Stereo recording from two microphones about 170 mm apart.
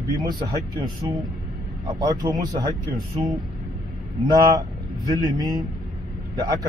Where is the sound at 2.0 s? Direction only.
20° right (ahead or behind).